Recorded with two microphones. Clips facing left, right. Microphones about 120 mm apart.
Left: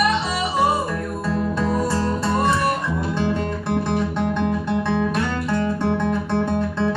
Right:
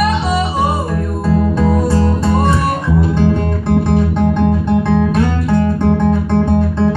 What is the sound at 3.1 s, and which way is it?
Music, 40° right (ahead or behind).